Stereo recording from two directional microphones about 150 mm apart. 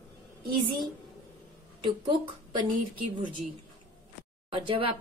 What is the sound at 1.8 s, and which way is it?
Speech, 30° right (ahead or behind).